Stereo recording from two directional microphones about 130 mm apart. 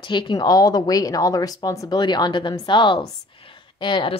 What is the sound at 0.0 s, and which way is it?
A woman's voice, 35° left (ahead or behind).